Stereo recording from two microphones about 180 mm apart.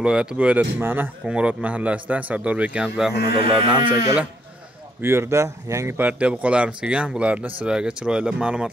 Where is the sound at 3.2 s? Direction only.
60° left (ahead or behind).